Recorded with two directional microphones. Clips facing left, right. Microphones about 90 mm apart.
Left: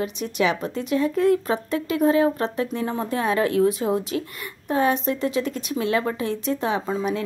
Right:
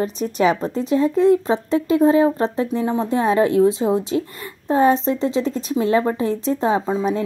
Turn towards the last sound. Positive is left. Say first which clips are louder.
# right 4 dB
turn(degrees=-25)  # may be behind; listen again after turning